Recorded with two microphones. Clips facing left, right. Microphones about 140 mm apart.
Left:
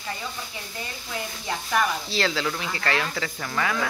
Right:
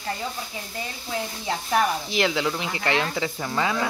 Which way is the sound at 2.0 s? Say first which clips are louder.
Right 2 dB; 15° right (ahead or behind).